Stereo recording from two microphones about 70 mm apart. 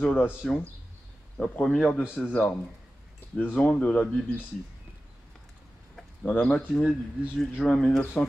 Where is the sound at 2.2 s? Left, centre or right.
Left.